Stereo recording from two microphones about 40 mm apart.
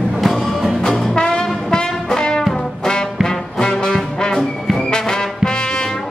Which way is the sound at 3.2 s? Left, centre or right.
Centre.